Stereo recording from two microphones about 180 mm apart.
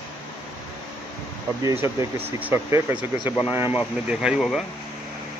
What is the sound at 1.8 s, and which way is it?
Speech, 30° left (ahead or behind).